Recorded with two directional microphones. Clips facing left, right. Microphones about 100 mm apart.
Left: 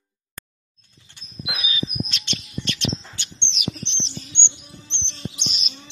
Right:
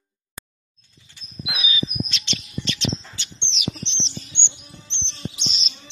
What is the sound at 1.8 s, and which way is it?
Bird, 50° left (ahead or behind).